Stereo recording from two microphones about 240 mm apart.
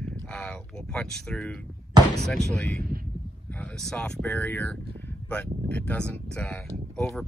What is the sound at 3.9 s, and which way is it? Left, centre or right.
Speech, centre.